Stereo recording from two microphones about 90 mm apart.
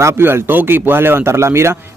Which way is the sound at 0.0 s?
25° right (ahead or behind).